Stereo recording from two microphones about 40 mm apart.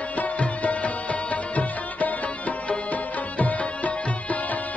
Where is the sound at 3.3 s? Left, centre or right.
Left.